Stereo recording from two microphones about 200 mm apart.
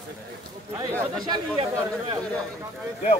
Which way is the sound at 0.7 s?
15° right (ahead or behind).